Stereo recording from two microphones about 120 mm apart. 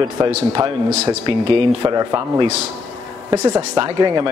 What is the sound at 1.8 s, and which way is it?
Speech, 30° right (ahead or behind).